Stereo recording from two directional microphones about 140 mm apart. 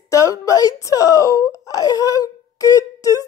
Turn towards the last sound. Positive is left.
turn(degrees=25)  # may be behind; listen again after turning